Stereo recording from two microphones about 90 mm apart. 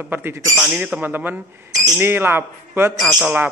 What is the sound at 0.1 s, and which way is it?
Speech, 25° right (ahead or behind).